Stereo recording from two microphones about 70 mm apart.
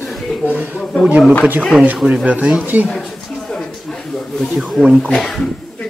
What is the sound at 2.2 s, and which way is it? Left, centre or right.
Speech, centre.